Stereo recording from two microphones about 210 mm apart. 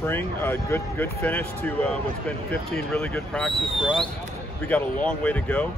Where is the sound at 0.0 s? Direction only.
10° left (ahead or behind).